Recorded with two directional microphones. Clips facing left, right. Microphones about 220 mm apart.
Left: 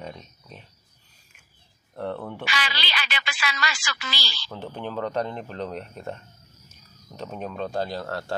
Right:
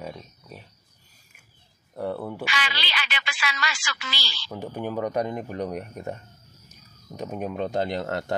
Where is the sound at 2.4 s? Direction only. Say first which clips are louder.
Even; 35° left (ahead or behind).